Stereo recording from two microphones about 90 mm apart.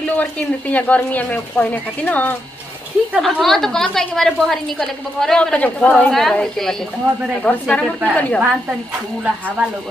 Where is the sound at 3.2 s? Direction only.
Centre (ahead or behind).